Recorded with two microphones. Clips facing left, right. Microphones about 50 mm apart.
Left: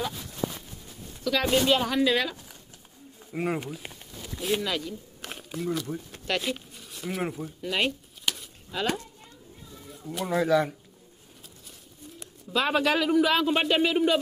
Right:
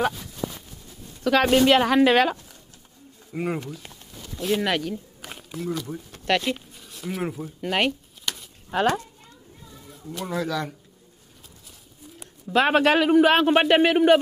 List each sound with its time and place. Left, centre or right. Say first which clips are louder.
1.2 s a man's voice: right 6 dB; right
3.3 s speech: right 1 dB; centre
3.6 s a sound: even; centre
4.6 s a man's voice: right 6 dB; right
5.2 s a sound: left 3 dB; centre
6.7 s pigeon: right 1 dB; centre
7.6 s a man's voice: right 4 dB; right
10.0 s speech: left 1 dB; centre
10.4 s speech: left 7 dB; centre
12.5 s a man's voice: right 6 dB; right